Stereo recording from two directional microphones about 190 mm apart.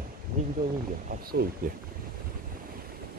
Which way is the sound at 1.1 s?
50° right (ahead or behind).